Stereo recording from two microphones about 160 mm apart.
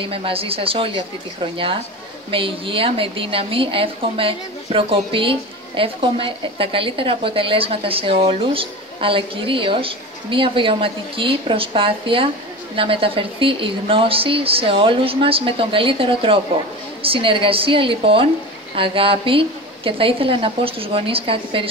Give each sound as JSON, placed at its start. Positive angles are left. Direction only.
{"t": 0.0, "sound": "a woman's voice", "side_deg": -35}
{"t": 2.3, "sound": "a woman's voice", "side_deg": -35}